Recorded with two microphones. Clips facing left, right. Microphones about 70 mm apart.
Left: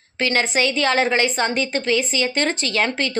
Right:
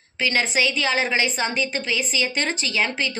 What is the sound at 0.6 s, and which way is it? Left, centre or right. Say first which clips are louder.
A woman's voice: left 5 dB; left.